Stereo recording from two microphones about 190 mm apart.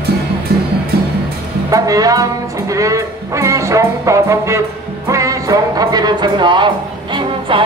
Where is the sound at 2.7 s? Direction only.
15° right (ahead or behind).